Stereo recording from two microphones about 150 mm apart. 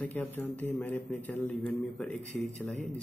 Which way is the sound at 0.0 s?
10° left (ahead or behind).